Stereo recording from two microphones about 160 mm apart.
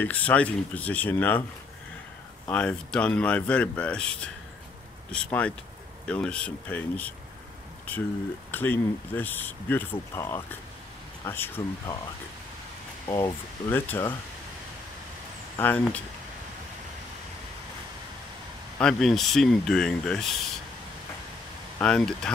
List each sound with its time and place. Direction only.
0.0 s speech: 10° left (ahead or behind)
2.5 s speech: 5° left (ahead or behind)
5.1 s speech: 10° left (ahead or behind)
8.5 s speech: 10° left (ahead or behind)
13.0 s speech: 25° left (ahead or behind)
13.7 s speech: 15° left (ahead or behind)
15.6 s speech: 10° left (ahead or behind)
18.8 s speech: 5° left (ahead or behind)
21.8 s speech: 5° left (ahead or behind)